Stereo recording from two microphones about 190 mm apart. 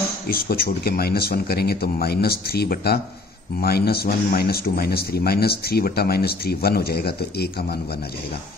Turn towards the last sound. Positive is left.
turn(degrees=55)  # may be behind; listen again after turning